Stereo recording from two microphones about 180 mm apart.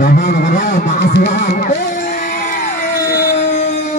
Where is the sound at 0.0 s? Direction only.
50° left (ahead or behind).